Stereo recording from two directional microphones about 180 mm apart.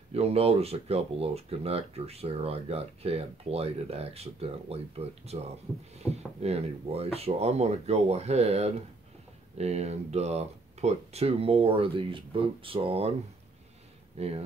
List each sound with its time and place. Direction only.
0.1 s speech: 35° right (ahead or behind)
14.1 s speech: 35° right (ahead or behind)